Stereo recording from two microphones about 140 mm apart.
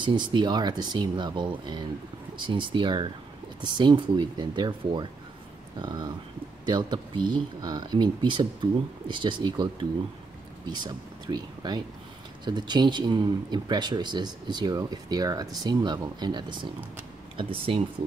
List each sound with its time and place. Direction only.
0.0 s speech: 35° right (ahead or behind)